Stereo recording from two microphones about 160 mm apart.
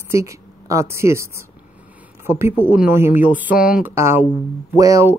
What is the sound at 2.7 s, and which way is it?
Speech, 10° right (ahead or behind).